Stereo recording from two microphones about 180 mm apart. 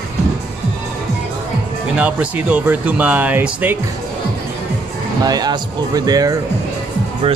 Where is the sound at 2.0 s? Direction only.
5° right (ahead or behind).